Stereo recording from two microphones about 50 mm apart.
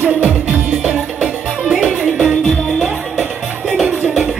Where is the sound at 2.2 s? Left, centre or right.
Centre.